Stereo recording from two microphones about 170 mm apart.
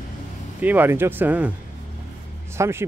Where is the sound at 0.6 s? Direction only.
10° right (ahead or behind).